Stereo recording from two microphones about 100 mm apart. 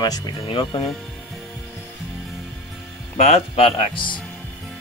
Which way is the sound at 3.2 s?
90° left.